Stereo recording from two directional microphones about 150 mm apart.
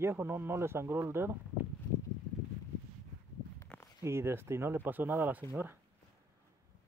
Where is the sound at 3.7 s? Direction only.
10° left (ahead or behind).